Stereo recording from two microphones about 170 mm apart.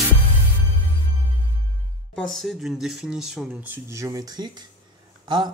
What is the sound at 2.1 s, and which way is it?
Speech, centre (ahead or behind).